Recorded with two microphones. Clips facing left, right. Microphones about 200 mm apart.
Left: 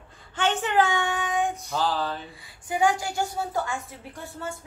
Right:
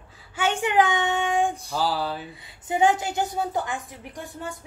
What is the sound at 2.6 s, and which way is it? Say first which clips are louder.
A woman's voice: right 2 dB; 25° right (ahead or behind).